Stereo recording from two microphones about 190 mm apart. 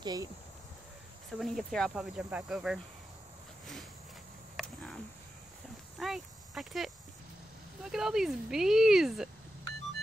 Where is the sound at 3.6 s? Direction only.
Centre (ahead or behind).